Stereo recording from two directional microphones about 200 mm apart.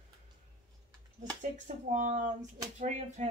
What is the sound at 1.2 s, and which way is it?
A woman's voice, 40° right (ahead or behind).